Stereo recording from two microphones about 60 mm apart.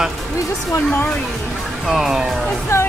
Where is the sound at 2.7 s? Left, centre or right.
Left.